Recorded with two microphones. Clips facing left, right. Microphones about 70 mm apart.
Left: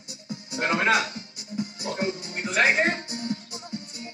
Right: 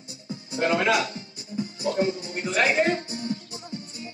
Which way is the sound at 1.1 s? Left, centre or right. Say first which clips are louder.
Right 1 dB; right.